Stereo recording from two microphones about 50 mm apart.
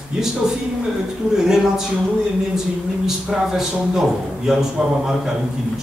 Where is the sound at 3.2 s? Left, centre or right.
Centre.